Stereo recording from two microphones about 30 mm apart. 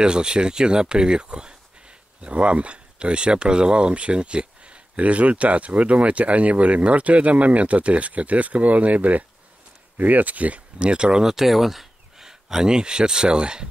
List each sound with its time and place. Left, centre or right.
0.0 s speech: right
9.9 s speech: right
10.8 s speech: right
11.2 s speech: centre
12.2 s a sound: centre
12.7 s speech: right